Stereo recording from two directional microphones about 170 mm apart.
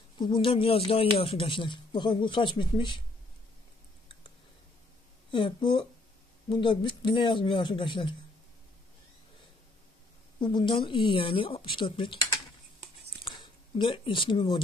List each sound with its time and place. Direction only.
0.2 s speech: 30° left (ahead or behind)
5.3 s speech: 30° left (ahead or behind)
10.4 s speech: 25° left (ahead or behind)
13.2 s a sound: 25° left (ahead or behind)